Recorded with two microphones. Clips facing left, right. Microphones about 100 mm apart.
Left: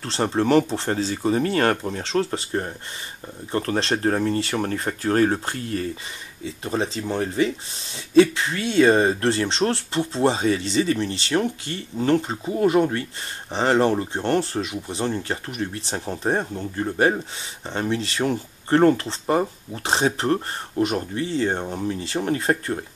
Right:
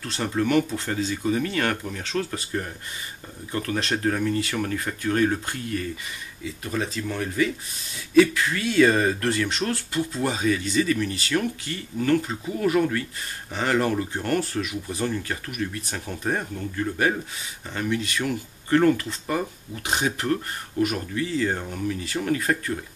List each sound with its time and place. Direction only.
0.0 s speech: 30° left (ahead or behind)